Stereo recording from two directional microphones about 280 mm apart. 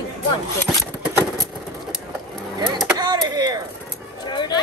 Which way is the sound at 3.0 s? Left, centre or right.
Centre.